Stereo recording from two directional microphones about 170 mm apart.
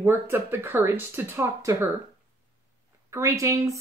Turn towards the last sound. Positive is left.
turn(degrees=-15)  # may be behind; listen again after turning